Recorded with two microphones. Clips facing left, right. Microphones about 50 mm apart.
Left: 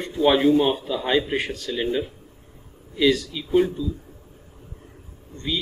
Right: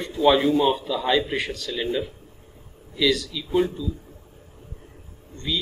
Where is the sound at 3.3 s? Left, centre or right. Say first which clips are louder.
Left 2 dB; left.